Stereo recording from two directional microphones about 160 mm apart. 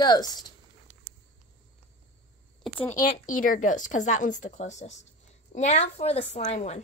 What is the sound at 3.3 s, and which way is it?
Speech, 55° left (ahead or behind).